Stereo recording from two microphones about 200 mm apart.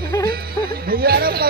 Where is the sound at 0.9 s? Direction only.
50° right (ahead or behind).